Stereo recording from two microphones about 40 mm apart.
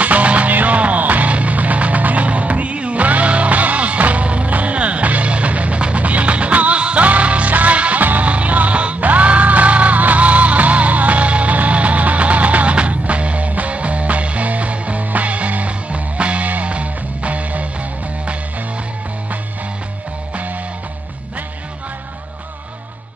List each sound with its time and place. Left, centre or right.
0.0 s music: right